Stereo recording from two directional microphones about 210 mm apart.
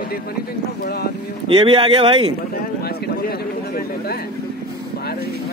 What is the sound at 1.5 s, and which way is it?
Speech, 25° right (ahead or behind).